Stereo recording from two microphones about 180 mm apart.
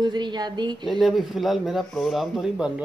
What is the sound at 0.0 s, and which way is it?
Speech, 25° right (ahead or behind).